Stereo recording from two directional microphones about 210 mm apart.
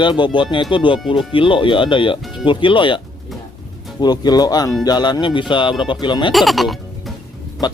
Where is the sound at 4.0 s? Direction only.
20° left (ahead or behind).